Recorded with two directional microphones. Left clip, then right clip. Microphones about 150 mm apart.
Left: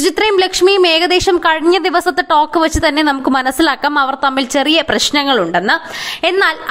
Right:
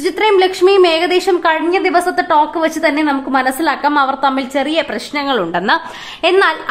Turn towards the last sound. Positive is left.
turn(degrees=20)  # may be behind; listen again after turning